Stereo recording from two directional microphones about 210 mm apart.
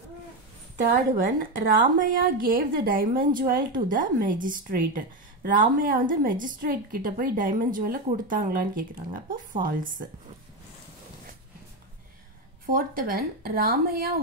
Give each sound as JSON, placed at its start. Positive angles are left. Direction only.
{"t": 1.1, "sound": "a woman's voice", "side_deg": -40}
{"t": 12.6, "sound": "a woman's voice", "side_deg": -40}